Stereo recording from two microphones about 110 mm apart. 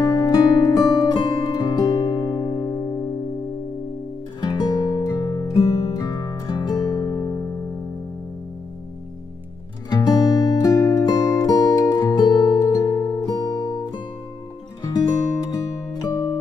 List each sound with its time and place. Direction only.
0.0 s music: 35° left (ahead or behind)
4.5 s music: 40° left (ahead or behind)
9.8 s music: 40° left (ahead or behind)
15.5 s music: 30° left (ahead or behind)